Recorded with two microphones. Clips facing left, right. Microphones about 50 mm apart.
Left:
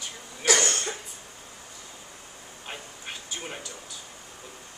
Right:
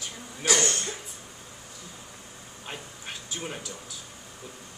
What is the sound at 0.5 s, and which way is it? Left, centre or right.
Cough, left.